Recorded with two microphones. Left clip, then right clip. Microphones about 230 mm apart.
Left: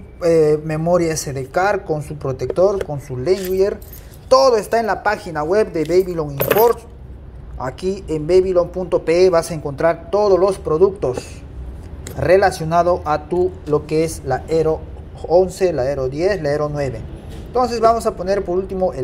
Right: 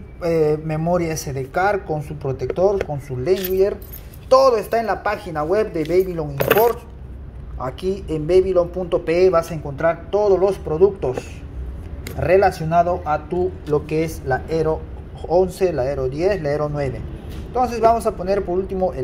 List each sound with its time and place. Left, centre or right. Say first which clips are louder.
0.2 s a man's voice: left 4 dB; centre